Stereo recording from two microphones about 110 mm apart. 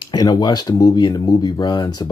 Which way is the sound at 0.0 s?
40° left (ahead or behind).